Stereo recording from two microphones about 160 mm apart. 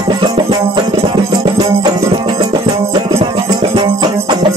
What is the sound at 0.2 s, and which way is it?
Music, 30° right (ahead or behind).